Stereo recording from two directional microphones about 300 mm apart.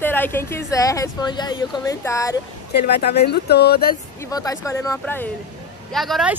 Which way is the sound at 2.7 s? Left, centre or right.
Left.